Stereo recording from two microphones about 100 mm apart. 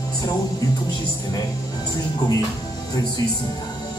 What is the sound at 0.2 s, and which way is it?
Speech, 45° left (ahead or behind).